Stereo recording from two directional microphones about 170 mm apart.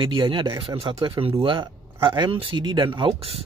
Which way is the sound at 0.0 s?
30° right (ahead or behind).